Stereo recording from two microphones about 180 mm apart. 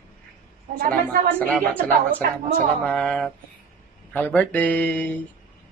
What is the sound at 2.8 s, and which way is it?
A woman's voice, 5° left (ahead or behind).